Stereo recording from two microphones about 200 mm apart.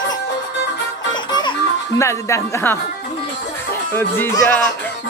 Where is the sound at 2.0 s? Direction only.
15° left (ahead or behind).